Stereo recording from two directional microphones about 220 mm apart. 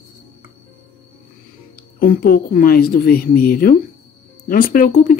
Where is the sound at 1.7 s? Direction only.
40° left (ahead or behind).